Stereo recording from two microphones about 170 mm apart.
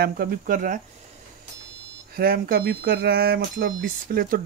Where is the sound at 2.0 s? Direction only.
60° right (ahead or behind).